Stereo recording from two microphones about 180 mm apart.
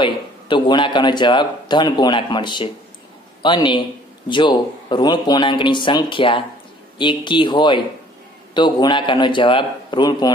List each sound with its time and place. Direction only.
0.0 s speech: 25° left (ahead or behind)